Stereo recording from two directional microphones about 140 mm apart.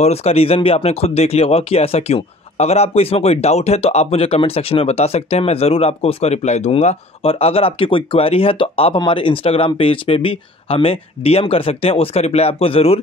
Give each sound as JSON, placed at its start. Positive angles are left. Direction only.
{"t": 0.0, "sound": "speech", "side_deg": 45}